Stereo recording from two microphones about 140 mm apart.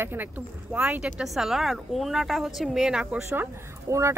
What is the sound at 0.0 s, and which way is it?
A woman's voice, 15° right (ahead or behind).